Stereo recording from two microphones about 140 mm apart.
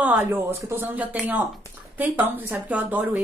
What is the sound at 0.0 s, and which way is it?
Speech, 15° right (ahead or behind).